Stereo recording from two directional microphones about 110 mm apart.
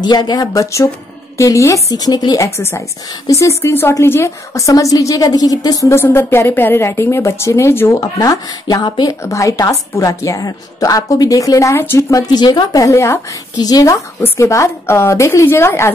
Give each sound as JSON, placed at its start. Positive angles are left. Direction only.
{"t": 0.0, "sound": "a woman's voice", "side_deg": 40}
{"t": 8.8, "sound": "speech", "side_deg": 45}
{"t": 9.2, "sound": "a woman's voice", "side_deg": 30}
{"t": 12.3, "sound": "a woman's voice", "side_deg": 40}
{"t": 14.2, "sound": "a woman's voice", "side_deg": 25}